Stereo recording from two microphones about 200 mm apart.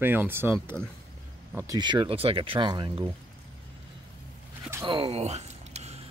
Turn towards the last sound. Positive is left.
turn(degrees=-35)  # may be behind; listen again after turning